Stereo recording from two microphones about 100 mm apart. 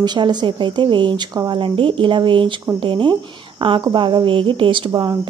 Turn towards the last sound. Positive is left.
turn(degrees=-55)  # may be behind; listen again after turning